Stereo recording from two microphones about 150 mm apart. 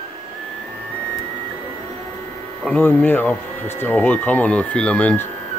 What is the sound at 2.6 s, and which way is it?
Speech, 10° left (ahead or behind).